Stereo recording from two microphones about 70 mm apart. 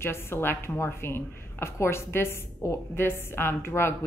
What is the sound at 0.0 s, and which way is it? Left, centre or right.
A woman's voice, left.